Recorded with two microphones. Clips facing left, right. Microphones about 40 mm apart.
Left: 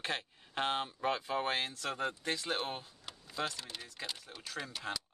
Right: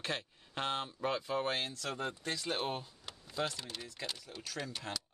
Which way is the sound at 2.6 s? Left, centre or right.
Centre.